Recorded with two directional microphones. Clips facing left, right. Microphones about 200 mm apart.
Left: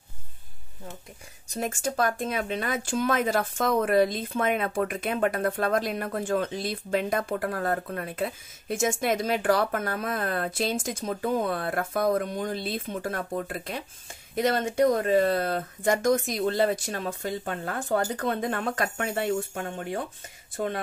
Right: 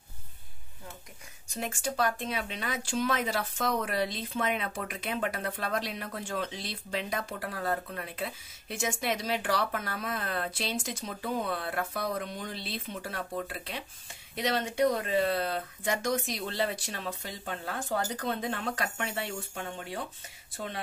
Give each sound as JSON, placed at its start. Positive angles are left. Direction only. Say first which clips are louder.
{"t": 1.5, "sound": "speech", "louder": "left 5 dB", "side_deg": 45}